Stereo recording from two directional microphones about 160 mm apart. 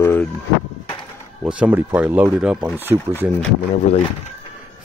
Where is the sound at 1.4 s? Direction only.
10° right (ahead or behind).